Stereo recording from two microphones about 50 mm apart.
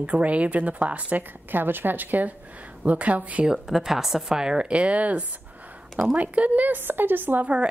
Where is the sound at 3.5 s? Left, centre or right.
Centre; by 7.5 s right.